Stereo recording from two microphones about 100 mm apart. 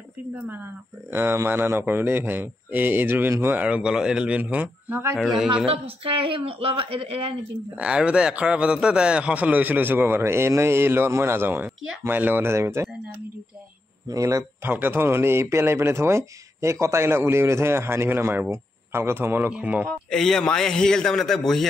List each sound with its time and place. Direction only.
1.1 s a man's voice: 25° right (ahead or behind)
3.6 s speech: 10° right (ahead or behind)
5.1 s a man's voice: 5° left (ahead or behind)
5.7 s speech: 70° right (ahead or behind)
7.7 s a man's voice: 10° right (ahead or behind); by 12.9 s 25° right (ahead or behind)
14.0 s a man's voice: 35° right (ahead or behind)
14.6 s a man's voice: 20° right (ahead or behind)
20.1 s a man's voice: 5° left (ahead or behind)